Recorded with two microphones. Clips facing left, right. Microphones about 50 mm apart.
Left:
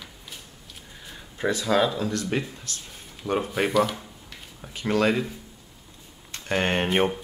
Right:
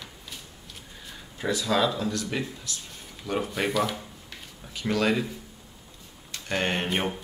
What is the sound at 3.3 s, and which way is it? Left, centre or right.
Speech, centre.